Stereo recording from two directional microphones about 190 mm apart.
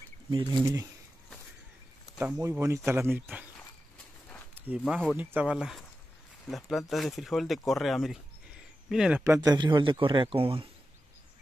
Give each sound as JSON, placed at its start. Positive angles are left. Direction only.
{"t": 0.3, "sound": "speech", "side_deg": -25}
{"t": 2.1, "sound": "speech", "side_deg": -10}
{"t": 4.6, "sound": "speech", "side_deg": -5}
{"t": 9.2, "sound": "speech", "side_deg": -15}